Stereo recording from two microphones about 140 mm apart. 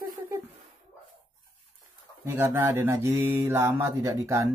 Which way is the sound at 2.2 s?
15° right (ahead or behind).